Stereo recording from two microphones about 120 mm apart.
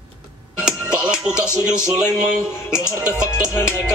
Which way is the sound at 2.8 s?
25° left (ahead or behind).